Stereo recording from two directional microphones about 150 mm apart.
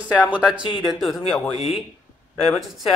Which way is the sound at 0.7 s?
35° left (ahead or behind).